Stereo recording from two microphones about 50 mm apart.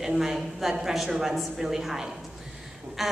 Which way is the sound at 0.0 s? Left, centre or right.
Centre.